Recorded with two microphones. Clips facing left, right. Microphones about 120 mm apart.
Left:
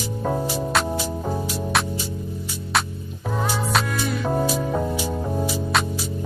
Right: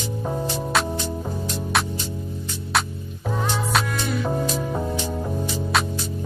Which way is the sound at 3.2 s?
Centre (ahead or behind).